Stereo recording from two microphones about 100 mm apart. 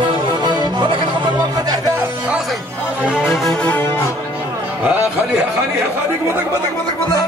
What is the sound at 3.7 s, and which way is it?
Music, 20° left (ahead or behind).